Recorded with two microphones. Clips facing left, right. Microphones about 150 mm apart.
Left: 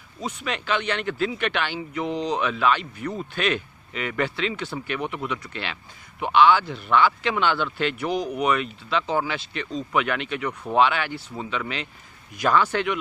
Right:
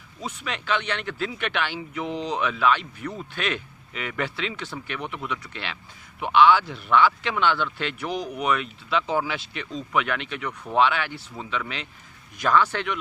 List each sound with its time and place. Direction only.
0.2 s speech: centre (ahead or behind)